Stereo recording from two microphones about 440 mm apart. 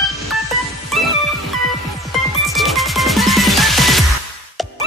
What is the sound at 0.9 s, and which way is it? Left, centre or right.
Music, centre.